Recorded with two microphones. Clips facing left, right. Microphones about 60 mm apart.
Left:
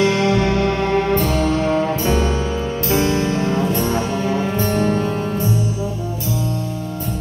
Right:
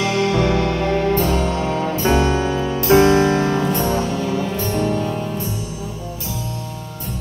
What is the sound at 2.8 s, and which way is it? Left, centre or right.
Music, right.